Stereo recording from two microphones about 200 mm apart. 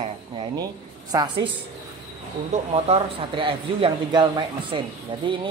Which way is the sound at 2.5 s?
30° right (ahead or behind).